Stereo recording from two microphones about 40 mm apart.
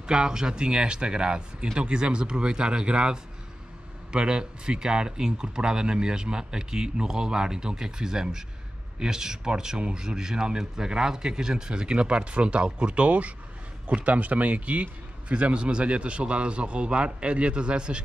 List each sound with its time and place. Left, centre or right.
0.0 s speech: centre